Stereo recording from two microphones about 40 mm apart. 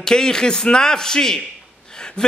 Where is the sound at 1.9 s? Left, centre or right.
Centre.